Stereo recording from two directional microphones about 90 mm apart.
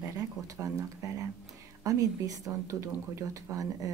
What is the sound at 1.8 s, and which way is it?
Speech, 40° right (ahead or behind).